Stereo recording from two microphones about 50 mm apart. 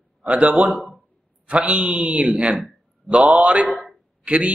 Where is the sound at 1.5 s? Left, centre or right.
Right.